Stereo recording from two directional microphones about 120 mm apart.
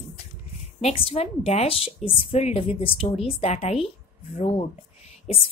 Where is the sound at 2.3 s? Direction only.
65° left (ahead or behind).